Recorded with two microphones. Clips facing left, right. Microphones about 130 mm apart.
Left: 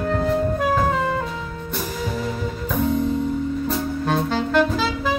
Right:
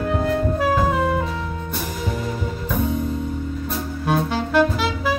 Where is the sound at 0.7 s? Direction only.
5° right (ahead or behind).